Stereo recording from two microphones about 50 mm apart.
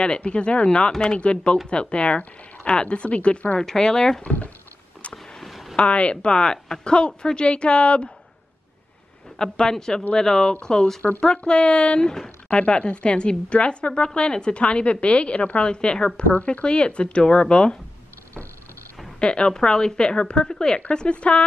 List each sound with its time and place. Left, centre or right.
0.0 s speech: centre
5.1 s a sound: centre
5.8 s speech: left
9.4 s speech: centre
16.3 s speech: left
19.1 s speech: centre